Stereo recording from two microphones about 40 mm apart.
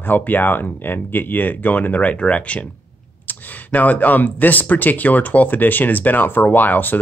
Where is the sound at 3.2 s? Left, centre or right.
Left.